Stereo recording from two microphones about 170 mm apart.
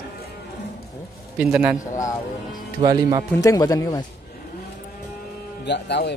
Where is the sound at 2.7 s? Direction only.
20° right (ahead or behind).